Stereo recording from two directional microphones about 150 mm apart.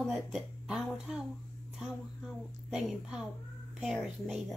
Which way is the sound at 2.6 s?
5° right (ahead or behind).